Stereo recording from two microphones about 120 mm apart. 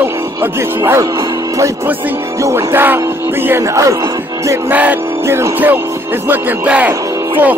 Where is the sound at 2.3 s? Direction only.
25° right (ahead or behind).